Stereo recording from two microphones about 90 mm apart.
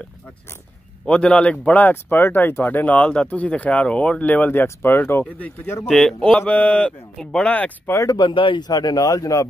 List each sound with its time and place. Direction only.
1.0 s speech: 10° left (ahead or behind); by 5.2 s 25° left (ahead or behind)
5.9 s speech: 5° left (ahead or behind)
7.9 s speech: 35° left (ahead or behind)
8.2 s a man's voice: 65° left (ahead or behind); by 9.5 s 40° left (ahead or behind)